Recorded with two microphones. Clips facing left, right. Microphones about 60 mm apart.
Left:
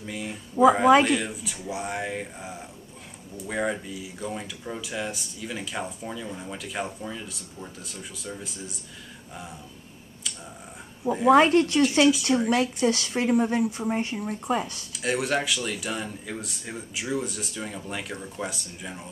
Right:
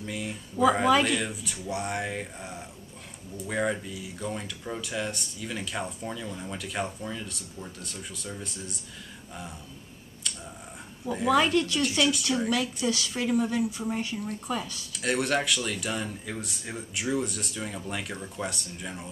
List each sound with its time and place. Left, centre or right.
0.0 s a sound: centre
1.0 s speech: centre
11.2 s speech: left
12.0 s speech: centre
12.4 s speech: left
14.9 s speech: centre